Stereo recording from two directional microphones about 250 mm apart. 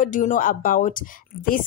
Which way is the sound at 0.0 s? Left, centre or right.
Left.